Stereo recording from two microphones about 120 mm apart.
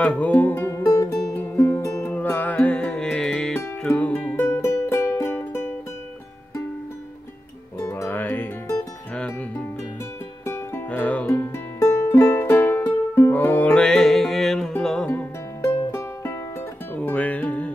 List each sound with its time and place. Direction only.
0.0 s music: 10° left (ahead or behind)
7.8 s music: 15° left (ahead or behind)
10.4 s music: 20° left (ahead or behind); by 15.0 s 5° left (ahead or behind)
15.0 s music: 15° left (ahead or behind)